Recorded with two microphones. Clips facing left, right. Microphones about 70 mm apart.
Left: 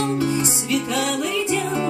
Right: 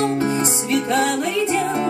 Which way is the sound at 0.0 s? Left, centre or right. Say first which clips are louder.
Right 2 dB; right.